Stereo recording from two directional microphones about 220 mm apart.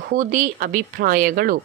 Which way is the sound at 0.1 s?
35° right (ahead or behind).